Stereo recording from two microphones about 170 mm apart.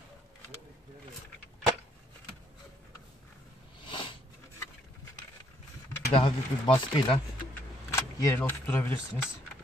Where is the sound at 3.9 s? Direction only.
30° left (ahead or behind).